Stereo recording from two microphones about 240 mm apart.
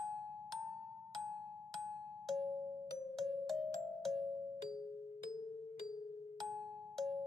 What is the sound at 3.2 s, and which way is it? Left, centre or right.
Music, centre.